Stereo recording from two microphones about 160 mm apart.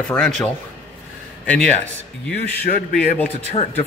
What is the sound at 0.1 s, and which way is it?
A man's voice, 5° left (ahead or behind).